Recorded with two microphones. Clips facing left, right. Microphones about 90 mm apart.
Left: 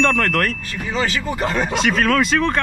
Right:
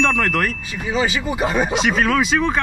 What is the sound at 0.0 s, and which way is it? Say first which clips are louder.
Speech: left 1 dB; centre (ahead or behind).